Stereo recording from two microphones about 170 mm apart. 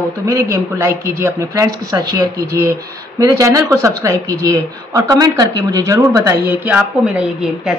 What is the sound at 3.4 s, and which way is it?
A woman's voice, 20° right (ahead or behind).